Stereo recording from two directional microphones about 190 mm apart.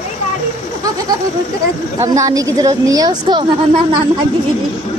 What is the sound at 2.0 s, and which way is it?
A woman's voice, 15° right (ahead or behind).